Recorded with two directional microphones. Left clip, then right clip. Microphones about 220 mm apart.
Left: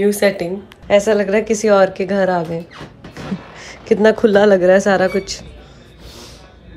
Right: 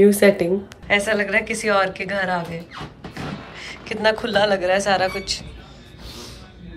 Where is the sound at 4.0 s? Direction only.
30° left (ahead or behind).